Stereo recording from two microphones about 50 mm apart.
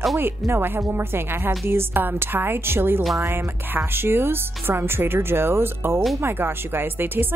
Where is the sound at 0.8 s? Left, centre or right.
Right.